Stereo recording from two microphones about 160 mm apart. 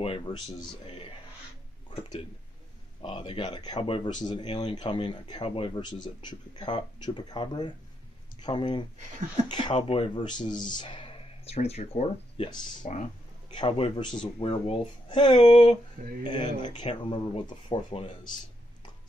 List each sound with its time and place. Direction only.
0.0 s speech: 30° left (ahead or behind)
12.8 s speech: 45° left (ahead or behind)
13.5 s speech: 30° left (ahead or behind)
16.0 s speech: 50° right (ahead or behind)
16.6 s speech: 30° left (ahead or behind)